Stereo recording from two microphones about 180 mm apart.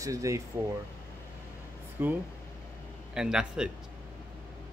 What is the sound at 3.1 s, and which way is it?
Speech, 5° right (ahead or behind).